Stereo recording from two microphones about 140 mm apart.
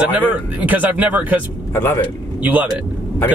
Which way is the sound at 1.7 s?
15° left (ahead or behind).